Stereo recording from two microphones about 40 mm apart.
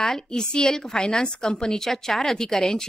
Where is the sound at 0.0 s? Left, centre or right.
Centre.